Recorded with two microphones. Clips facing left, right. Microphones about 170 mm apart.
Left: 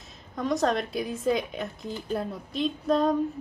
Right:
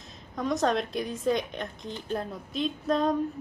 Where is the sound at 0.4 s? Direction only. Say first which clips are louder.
Left 1 dB; centre (ahead or behind).